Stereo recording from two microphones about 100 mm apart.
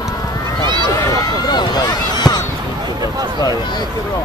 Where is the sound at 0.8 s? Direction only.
35° left (ahead or behind).